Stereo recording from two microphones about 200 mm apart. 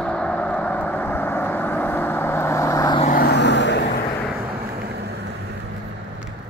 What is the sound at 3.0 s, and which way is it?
Vehicle, 45° left (ahead or behind).